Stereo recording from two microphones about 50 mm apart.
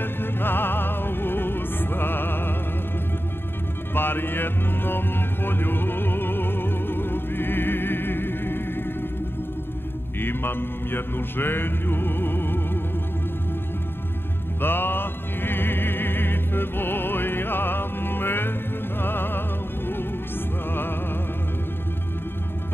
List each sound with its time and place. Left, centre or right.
0.0 s music: left
3.9 s music: left
10.2 s mantra: left
14.6 s music: left